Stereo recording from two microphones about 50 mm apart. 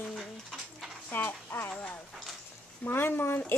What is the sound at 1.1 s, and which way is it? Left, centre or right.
Speech, left.